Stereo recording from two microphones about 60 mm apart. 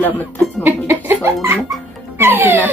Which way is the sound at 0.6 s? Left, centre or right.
Right.